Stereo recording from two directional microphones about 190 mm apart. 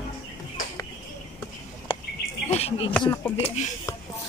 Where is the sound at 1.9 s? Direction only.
25° left (ahead or behind).